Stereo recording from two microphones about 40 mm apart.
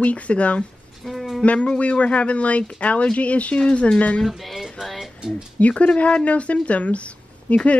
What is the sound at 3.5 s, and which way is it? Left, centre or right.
Speech, left.